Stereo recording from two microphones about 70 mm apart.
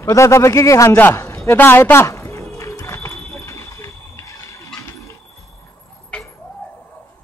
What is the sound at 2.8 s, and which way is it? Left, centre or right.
Horse, left.